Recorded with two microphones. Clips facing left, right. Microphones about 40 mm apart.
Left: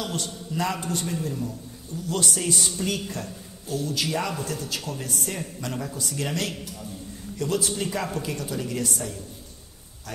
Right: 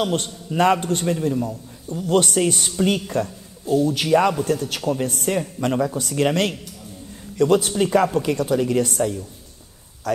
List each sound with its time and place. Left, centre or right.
0.0 s a man's voice: right
5.1 s a man's voice: right